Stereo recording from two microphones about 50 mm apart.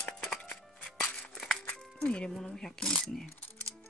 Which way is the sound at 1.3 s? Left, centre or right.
Centre.